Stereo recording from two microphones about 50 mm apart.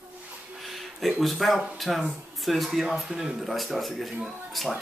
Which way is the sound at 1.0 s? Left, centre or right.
Centre.